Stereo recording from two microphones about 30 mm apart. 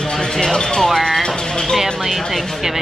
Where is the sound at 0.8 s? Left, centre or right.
Centre.